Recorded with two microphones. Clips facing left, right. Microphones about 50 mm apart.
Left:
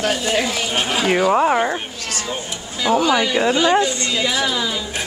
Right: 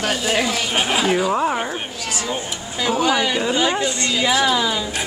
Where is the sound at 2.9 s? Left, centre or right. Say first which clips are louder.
Left 2 dB; centre.